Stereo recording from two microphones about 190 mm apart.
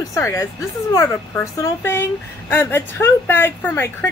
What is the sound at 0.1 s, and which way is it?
A woman's voice, 15° left (ahead or behind).